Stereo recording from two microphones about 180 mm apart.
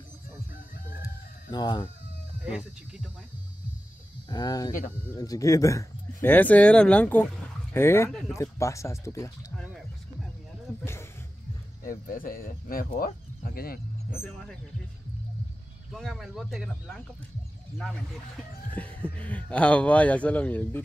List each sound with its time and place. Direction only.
1.0 s chicken: 25° left (ahead or behind)
2.4 s speech: 5° right (ahead or behind)
4.3 s speech: 20° left (ahead or behind)
11.8 s speech: 50° left (ahead or behind)
14.2 s speech: 5° left (ahead or behind)
15.9 s speech: centre (ahead or behind)